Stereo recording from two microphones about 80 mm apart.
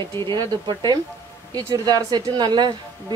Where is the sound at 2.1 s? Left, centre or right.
Right.